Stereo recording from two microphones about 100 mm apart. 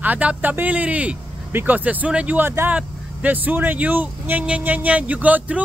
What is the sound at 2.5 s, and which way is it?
Speech, 25° right (ahead or behind).